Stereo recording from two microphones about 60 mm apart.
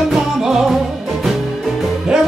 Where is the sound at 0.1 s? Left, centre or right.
Centre.